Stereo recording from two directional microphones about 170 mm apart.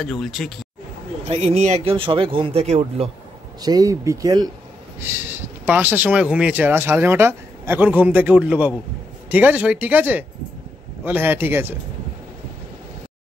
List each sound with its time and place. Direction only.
0.0 s speech: centre (ahead or behind)
1.3 s speech: 40° right (ahead or behind)
3.6 s speech: 20° right (ahead or behind)